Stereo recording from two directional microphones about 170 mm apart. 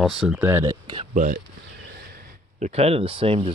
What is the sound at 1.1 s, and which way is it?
Speech, 50° right (ahead or behind).